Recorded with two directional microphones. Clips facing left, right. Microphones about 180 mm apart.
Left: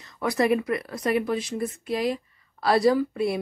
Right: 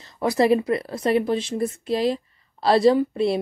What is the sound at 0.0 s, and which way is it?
A woman's voice, 30° right (ahead or behind).